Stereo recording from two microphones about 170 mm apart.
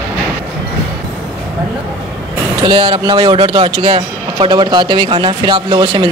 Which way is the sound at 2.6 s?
30° right (ahead or behind).